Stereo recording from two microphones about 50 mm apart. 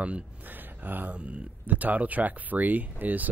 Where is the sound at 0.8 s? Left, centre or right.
Right.